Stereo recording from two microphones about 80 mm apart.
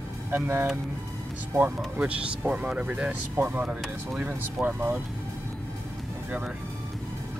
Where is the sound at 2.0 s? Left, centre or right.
Centre.